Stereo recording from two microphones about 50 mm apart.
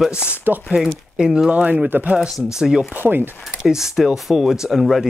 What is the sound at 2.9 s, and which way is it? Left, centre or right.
Speech, right.